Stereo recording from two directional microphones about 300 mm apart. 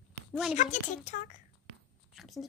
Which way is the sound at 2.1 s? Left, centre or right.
Centre.